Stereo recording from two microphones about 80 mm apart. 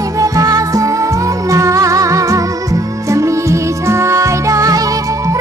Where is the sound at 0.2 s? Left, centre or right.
Right.